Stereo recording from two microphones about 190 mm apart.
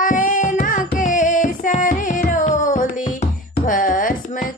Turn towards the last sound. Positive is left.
turn(degrees=45)  # may be behind; listen again after turning